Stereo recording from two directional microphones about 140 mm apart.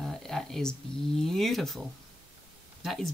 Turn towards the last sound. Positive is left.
turn(degrees=0)  # may be behind; listen again after turning